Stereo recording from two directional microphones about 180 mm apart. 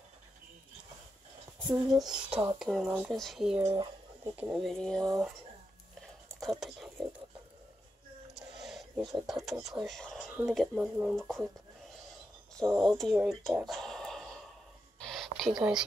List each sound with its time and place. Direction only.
1.9 s speech: 5° right (ahead or behind)
3.6 s a sound: 20° right (ahead or behind)
4.4 s speech: 5° right (ahead or behind)
6.4 s speech: centre (ahead or behind)
8.4 s speech: centre (ahead or behind)
12.8 s speech: centre (ahead or behind)
15.0 s a sound: centre (ahead or behind)